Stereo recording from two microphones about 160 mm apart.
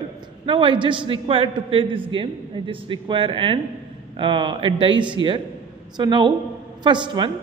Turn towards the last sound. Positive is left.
turn(degrees=-30)  # may be behind; listen again after turning